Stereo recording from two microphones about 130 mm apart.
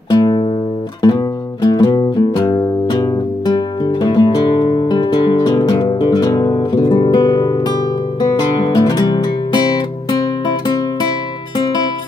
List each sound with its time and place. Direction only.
0.1 s music: 35° left (ahead or behind)
11.5 s music: 30° left (ahead or behind)